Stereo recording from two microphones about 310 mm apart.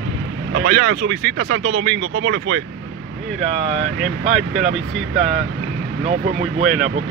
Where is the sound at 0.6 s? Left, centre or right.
Right.